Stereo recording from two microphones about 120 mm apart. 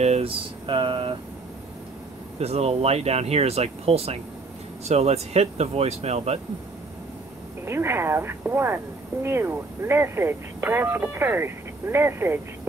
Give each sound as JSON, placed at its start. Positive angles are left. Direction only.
{"t": 0.0, "sound": "a sound", "side_deg": -65}
{"t": 0.7, "sound": "speech", "side_deg": -45}
{"t": 2.3, "sound": "speech", "side_deg": -60}
{"t": 7.6, "sound": "speech", "side_deg": -20}